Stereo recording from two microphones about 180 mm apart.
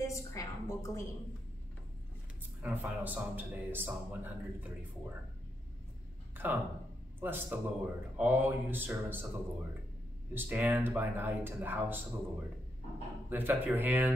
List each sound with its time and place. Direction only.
0.0 s a sound: 15° left (ahead or behind)
2.6 s speech: 10° right (ahead or behind)
6.3 s a sound: 10° right (ahead or behind)
7.2 s speech: 10° right (ahead or behind)
10.3 s speech: 10° right (ahead or behind)
13.3 s speech: 10° right (ahead or behind)